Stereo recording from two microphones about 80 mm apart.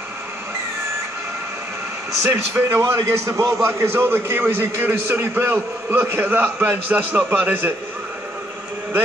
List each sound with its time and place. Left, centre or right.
2.2 s a man's voice: right